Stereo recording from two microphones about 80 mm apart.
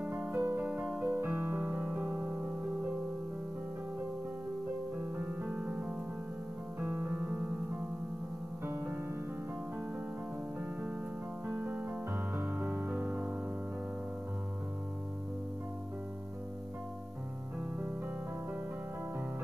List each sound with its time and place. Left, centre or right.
0.0 s music: right
1.2 s music: right
4.9 s music: right
8.6 s music: right
11.4 s music: right